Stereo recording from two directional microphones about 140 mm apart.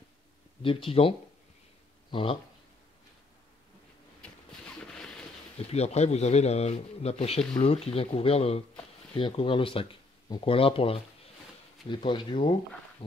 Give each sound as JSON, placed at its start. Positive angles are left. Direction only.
{"t": 0.6, "sound": "speech", "side_deg": 40}
{"t": 2.0, "sound": "a sound", "side_deg": 35}
{"t": 5.6, "sound": "speech", "side_deg": 50}